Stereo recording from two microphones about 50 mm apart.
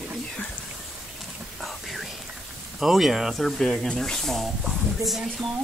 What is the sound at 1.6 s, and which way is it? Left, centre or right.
Whispering, centre.